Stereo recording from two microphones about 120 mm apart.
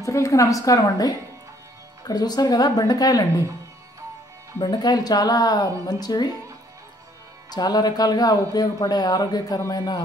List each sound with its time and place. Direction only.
0.0 s a woman's voice: 25° left (ahead or behind)
4.6 s speech: 35° left (ahead or behind)
7.5 s speech: 35° left (ahead or behind)